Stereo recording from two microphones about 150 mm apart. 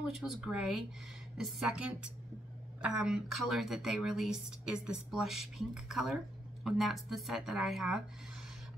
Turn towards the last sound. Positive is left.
turn(degrees=0)  # may be behind; listen again after turning